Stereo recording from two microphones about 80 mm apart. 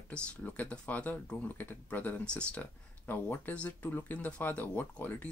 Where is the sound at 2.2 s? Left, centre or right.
Centre.